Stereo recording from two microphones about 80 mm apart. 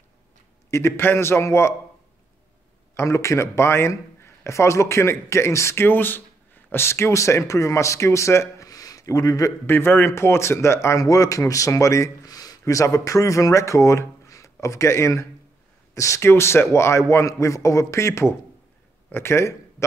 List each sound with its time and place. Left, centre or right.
0.7 s a man's voice: left
2.9 s a man's voice: left
8.6 s a sound: left
9.7 s a man's voice: left